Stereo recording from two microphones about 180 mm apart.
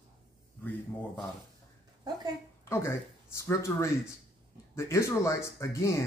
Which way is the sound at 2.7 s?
15° left (ahead or behind).